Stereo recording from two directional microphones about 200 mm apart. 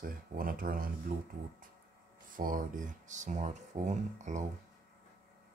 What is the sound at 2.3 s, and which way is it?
Speech, 45° right (ahead or behind).